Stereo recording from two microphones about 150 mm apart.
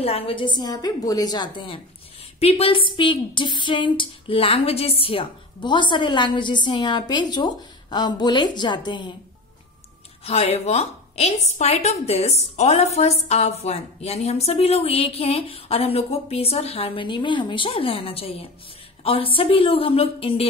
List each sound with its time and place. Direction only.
0.0 s a woman's voice: 40° left (ahead or behind)
10.2 s a woman's voice: 45° left (ahead or behind)